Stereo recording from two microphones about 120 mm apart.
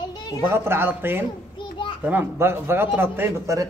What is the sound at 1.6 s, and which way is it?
Children playing, 40° left (ahead or behind).